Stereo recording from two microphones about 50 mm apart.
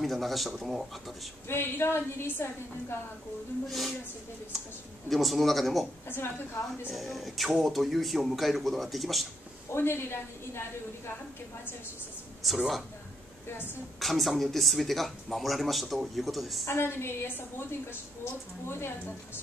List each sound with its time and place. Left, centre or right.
0.0 s speech: centre
1.5 s a woman's voice: left
3.6 s speech: centre
5.1 s speech: centre
6.0 s a woman's voice: left
6.9 s speech: centre
9.7 s a woman's voice: left
12.4 s speech: centre
13.9 s speech: centre
16.6 s a woman's voice: left
18.2 s a woman's voice: left